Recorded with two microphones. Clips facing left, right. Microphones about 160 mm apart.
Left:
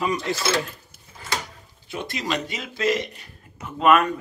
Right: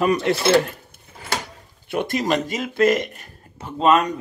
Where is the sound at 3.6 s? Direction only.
25° right (ahead or behind).